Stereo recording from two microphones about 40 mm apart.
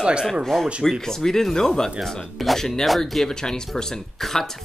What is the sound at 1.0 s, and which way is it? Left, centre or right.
Speech, centre.